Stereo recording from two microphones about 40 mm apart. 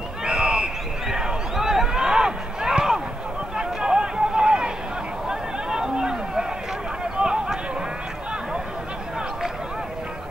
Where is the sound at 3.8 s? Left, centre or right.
Centre.